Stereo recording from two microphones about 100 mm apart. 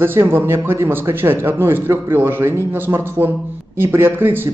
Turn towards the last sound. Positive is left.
turn(degrees=-20)  # may be behind; listen again after turning